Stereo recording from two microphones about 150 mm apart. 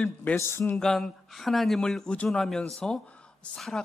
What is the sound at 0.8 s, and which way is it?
Speech, 5° left (ahead or behind).